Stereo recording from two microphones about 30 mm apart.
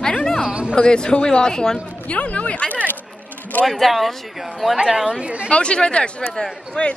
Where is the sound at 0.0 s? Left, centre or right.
Left.